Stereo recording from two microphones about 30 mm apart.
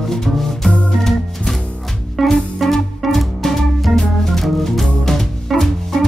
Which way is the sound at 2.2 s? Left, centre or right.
Centre.